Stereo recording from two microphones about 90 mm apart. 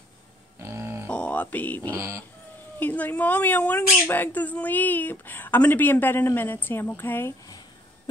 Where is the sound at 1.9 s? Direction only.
30° right (ahead or behind).